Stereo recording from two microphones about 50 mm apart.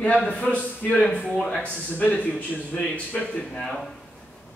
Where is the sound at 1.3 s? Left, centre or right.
Centre.